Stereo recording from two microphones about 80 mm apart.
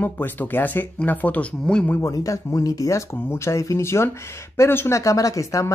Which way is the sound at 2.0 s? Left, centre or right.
Left.